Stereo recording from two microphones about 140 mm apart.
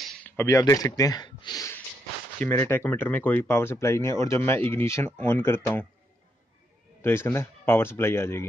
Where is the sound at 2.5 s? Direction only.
20° left (ahead or behind).